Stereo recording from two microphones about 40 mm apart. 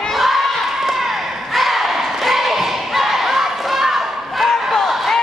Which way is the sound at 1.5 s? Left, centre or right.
Centre.